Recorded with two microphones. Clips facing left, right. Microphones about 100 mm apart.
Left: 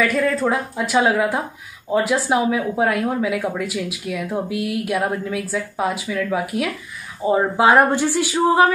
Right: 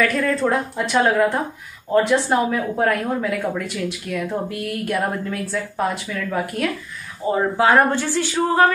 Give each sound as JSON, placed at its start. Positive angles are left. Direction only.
{"t": 0.0, "sound": "speech", "side_deg": 5}
{"t": 7.2, "sound": "speech", "side_deg": 20}